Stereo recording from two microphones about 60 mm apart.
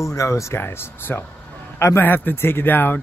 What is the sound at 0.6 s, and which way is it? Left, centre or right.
A man's voice, left.